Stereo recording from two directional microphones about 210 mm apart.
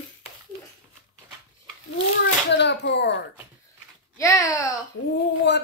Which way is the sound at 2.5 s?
55° left (ahead or behind).